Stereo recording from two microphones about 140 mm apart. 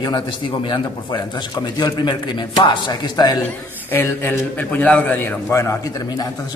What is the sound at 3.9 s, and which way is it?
A man's voice, 15° left (ahead or behind).